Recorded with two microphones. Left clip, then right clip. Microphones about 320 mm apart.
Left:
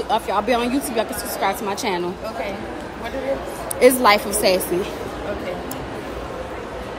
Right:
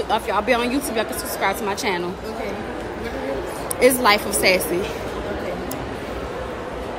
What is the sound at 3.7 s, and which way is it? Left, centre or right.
Speech, centre.